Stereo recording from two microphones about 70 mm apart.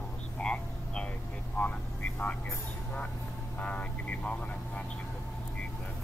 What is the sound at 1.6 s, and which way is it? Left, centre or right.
Vehicle, left.